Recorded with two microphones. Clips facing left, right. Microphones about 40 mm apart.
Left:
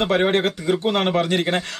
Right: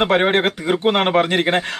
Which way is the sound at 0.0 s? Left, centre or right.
Right.